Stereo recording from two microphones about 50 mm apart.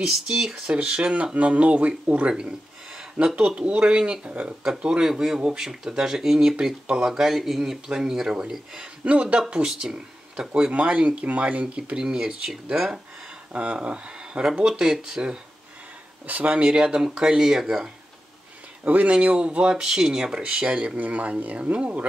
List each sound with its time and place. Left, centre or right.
0.0 s speech: centre
0.7 s speech: right
2.3 s speech: centre
9.0 s speech: right
13.5 s speech: right; by 15.3 s centre
16.3 s speech: right
16.8 s speech: centre
18.9 s speech: right